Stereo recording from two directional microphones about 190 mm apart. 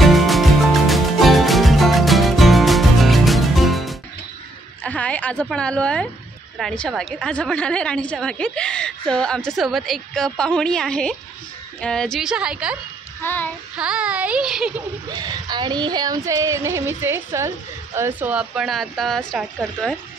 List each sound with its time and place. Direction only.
0.0 s music: centre (ahead or behind)
4.8 s a sound: 5° left (ahead or behind)
6.6 s a woman's voice: 5° left (ahead or behind)
13.2 s child singing: 10° left (ahead or behind)
13.7 s a woman's voice: 5° right (ahead or behind)
15.1 s a woman's voice: 20° right (ahead or behind); by 20.0 s centre (ahead or behind)